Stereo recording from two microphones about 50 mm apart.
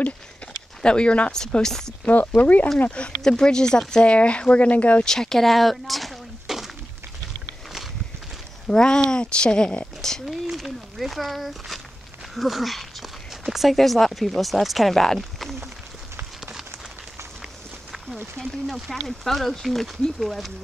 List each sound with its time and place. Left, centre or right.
0.8 s speech: centre
1.3 s speech: centre
2.0 s speech: left
5.0 s speech: centre
8.6 s speech: centre
10.4 s speech: centre
17.9 s a sound: centre
18.4 s speech: centre